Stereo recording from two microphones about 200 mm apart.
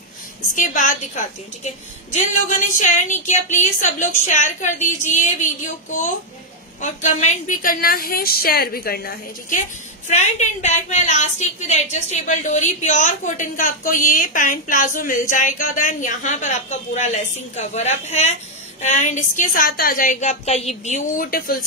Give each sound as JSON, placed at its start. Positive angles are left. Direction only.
{"t": 0.6, "sound": "a woman's voice", "side_deg": 40}
{"t": 6.8, "sound": "a woman's voice", "side_deg": 35}
{"t": 10.0, "sound": "a woman's voice", "side_deg": 35}